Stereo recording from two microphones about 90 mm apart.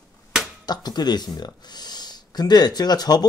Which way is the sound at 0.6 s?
50° left (ahead or behind).